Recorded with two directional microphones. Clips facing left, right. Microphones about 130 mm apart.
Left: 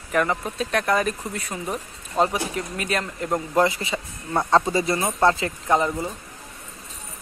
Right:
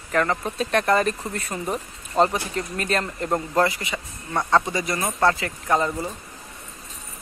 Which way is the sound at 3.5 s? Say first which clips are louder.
Left 3 dB; 20° left (ahead or behind).